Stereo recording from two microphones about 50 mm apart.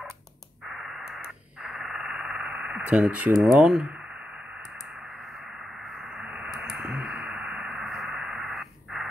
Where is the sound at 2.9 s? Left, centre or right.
Right.